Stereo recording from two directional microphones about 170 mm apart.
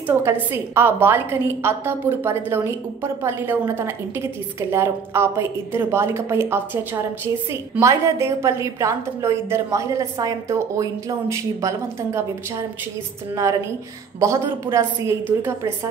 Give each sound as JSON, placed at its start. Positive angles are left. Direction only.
{"t": 0.0, "sound": "a woman's voice", "side_deg": -15}
{"t": 13.3, "sound": "a woman's voice", "side_deg": -15}